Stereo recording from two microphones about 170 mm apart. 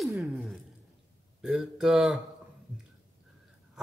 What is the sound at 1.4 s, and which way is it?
Speech, 5° right (ahead or behind).